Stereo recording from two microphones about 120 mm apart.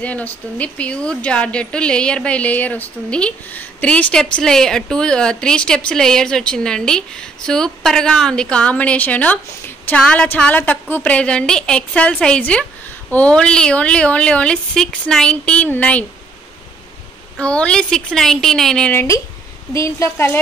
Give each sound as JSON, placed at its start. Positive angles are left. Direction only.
{"t": 0.0, "sound": "a woman's voice", "side_deg": 10}
{"t": 17.4, "sound": "speech", "side_deg": 10}
{"t": 18.9, "sound": "speech", "side_deg": 25}